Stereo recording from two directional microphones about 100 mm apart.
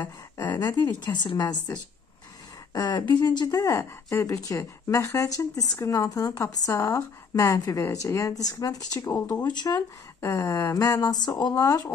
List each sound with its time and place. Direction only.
0.4 s a woman's voice: 45° left (ahead or behind)
9.0 s speech: 20° left (ahead or behind)
9.4 s speech: 45° left (ahead or behind)